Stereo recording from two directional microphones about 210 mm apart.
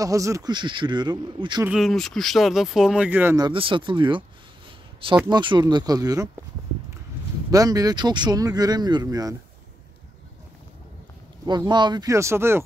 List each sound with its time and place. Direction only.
0.0 s a man's voice: 15° right (ahead or behind)
1.7 s speech: centre (ahead or behind); by 4.2 s 25° right (ahead or behind)
5.3 s a man's voice: 20° right (ahead or behind)
7.5 s speech: 15° right (ahead or behind)
11.4 s speech: 20° right (ahead or behind)